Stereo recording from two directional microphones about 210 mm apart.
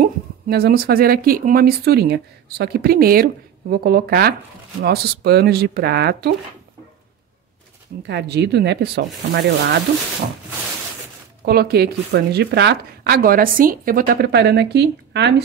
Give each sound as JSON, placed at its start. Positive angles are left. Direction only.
{"t": 0.0, "sound": "speech", "side_deg": -45}
{"t": 8.1, "sound": "speech", "side_deg": -55}
{"t": 11.4, "sound": "speech", "side_deg": -50}